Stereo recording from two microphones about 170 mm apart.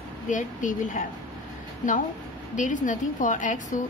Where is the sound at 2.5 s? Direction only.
50° left (ahead or behind).